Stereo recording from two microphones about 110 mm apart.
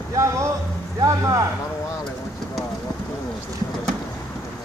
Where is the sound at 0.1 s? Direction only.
30° right (ahead or behind).